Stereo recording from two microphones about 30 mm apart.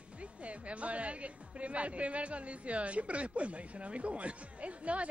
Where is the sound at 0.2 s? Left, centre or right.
Right.